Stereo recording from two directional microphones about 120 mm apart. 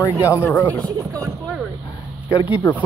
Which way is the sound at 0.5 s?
10° left (ahead or behind).